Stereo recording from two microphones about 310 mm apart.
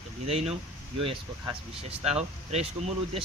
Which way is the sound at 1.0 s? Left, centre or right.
Centre.